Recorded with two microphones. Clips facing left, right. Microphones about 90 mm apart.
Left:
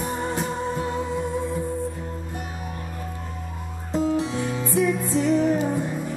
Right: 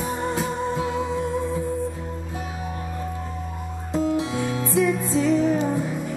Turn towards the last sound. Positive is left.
turn(degrees=0)  # may be behind; listen again after turning